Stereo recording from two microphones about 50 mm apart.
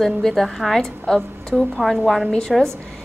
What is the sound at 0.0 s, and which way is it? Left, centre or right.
A woman's voice, centre.